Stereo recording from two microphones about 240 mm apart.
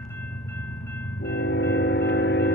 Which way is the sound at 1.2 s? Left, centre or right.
Left.